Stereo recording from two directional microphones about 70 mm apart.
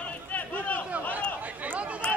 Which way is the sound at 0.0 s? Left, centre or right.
Left.